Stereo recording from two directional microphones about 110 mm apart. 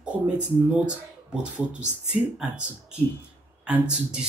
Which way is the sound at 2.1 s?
10° right (ahead or behind).